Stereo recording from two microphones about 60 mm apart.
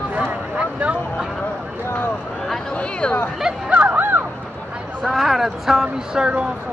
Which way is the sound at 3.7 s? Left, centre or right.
Right.